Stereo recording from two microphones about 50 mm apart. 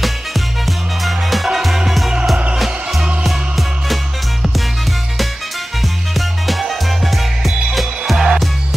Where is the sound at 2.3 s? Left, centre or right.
Right.